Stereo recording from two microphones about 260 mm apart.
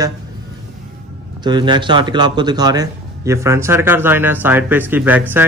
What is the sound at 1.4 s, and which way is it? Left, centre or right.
A man's voice, centre.